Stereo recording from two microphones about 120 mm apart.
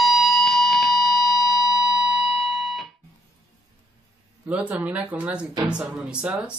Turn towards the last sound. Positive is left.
turn(degrees=-10)  # may be behind; listen again after turning